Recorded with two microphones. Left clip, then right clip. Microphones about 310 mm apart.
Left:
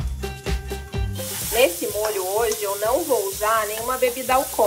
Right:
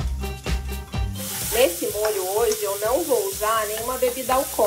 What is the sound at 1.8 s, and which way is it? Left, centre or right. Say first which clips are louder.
Speech: even; centre.